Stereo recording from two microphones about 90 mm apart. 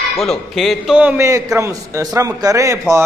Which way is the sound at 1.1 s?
35° right (ahead or behind).